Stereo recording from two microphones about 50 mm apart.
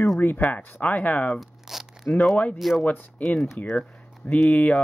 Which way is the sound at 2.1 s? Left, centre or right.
Left.